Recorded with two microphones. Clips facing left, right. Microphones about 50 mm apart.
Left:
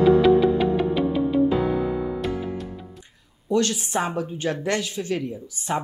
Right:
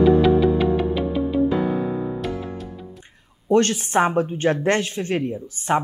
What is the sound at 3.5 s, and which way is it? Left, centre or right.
Speech, right.